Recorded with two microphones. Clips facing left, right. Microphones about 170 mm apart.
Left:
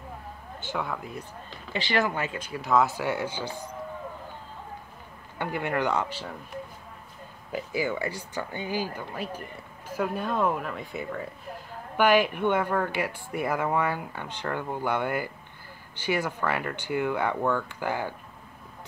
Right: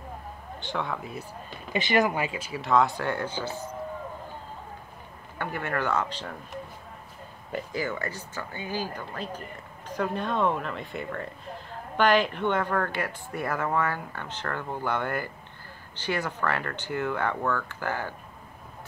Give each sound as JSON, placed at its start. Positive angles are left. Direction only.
{"t": 0.6, "sound": "speech", "side_deg": 5}
{"t": 1.7, "sound": "speech", "side_deg": -20}
{"t": 5.4, "sound": "speech", "side_deg": 15}
{"t": 7.5, "sound": "speech", "side_deg": 10}